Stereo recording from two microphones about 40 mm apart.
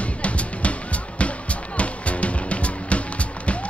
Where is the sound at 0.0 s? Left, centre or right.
Left.